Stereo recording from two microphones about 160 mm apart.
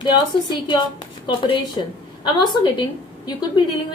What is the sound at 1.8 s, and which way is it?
A woman's voice, 30° left (ahead or behind).